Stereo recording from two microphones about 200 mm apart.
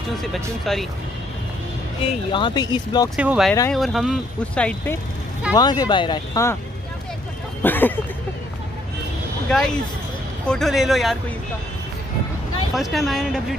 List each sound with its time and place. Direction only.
0.2 s speech: centre (ahead or behind)
2.3 s speech: 20° left (ahead or behind)
3.2 s speech: 5° right (ahead or behind)
5.5 s speech: 20° left (ahead or behind)
7.6 s speech: 10° left (ahead or behind)
9.5 s speech: 5° left (ahead or behind)
12.7 s speech: centre (ahead or behind)